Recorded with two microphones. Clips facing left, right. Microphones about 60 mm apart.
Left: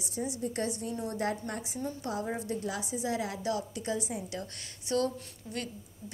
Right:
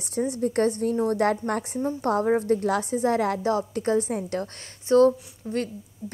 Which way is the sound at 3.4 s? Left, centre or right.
Right.